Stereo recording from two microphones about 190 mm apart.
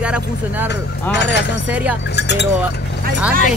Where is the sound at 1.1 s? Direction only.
65° left (ahead or behind).